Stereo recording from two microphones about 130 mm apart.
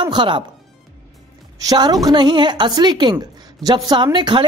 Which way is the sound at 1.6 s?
30° right (ahead or behind).